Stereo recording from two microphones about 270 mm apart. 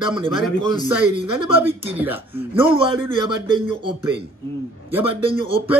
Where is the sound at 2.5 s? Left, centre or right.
Centre.